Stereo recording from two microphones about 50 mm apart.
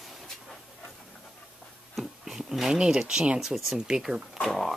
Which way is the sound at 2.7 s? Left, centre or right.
Centre.